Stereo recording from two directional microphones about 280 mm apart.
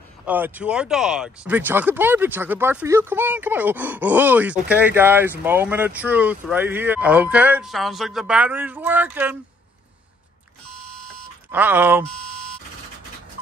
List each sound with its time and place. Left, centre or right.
0.2 s speech: centre
11.5 s speech: centre